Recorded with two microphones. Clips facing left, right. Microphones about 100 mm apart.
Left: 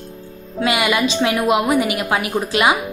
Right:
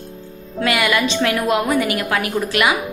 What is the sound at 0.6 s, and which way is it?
A woman's voice, 20° left (ahead or behind).